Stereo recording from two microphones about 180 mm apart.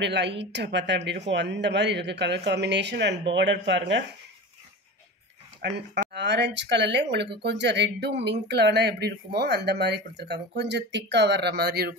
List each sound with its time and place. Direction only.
0.0 s speech: 75° right (ahead or behind)
5.6 s speech: 70° right (ahead or behind)